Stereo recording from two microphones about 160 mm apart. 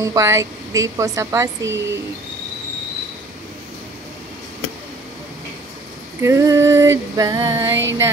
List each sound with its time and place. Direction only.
0.0 s speech: 20° right (ahead or behind)
6.2 s speech: 20° right (ahead or behind)